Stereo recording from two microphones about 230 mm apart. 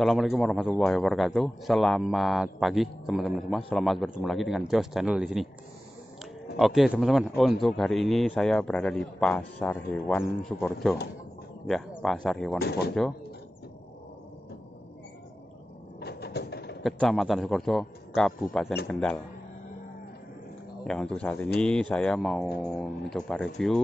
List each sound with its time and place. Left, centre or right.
0.0 s speech: centre
6.5 s speech: centre
12.0 s speech: centre
12.5 s speech: left
16.0 s a sound: left
16.8 s speech: centre
20.8 s speech: centre